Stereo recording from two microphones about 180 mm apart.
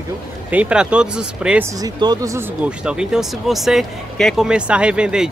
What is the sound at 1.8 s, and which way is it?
Speech, 20° right (ahead or behind).